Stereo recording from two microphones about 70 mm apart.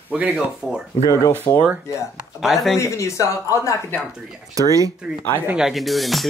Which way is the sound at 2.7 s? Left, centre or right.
Left.